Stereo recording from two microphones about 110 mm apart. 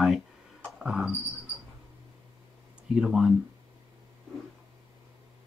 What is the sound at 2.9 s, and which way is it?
Speech, 5° right (ahead or behind).